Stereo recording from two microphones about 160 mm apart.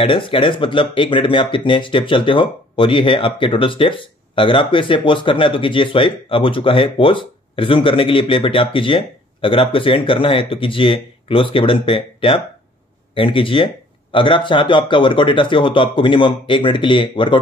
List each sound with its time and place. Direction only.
0.0 s speech: 35° left (ahead or behind)